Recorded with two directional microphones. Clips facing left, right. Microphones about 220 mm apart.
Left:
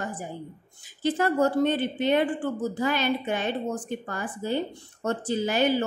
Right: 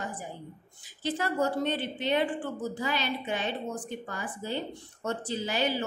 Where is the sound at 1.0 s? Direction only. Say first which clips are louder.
Left 6 dB; 50° left (ahead or behind).